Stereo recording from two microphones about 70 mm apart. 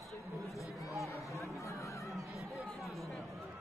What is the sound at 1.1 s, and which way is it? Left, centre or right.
Chatter, left.